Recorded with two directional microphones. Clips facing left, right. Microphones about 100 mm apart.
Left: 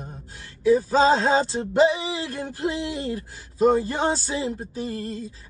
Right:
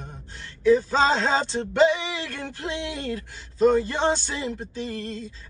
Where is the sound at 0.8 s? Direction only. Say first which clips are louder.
Left 3 dB; 35° left (ahead or behind).